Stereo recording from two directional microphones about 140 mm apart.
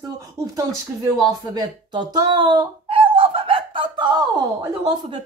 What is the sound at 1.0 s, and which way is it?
Speech, 25° right (ahead or behind).